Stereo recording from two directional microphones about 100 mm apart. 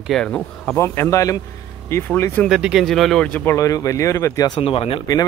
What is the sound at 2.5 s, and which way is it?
Speech, 5° right (ahead or behind).